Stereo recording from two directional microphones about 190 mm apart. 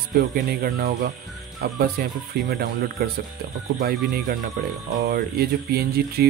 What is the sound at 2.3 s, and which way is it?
Speech, 55° right (ahead or behind).